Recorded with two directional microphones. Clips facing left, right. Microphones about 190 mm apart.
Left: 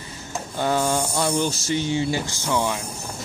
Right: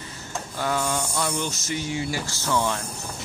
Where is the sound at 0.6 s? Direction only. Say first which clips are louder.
Left 4 dB; 30° left (ahead or behind).